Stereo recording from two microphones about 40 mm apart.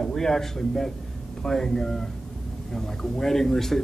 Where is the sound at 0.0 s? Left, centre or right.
Centre.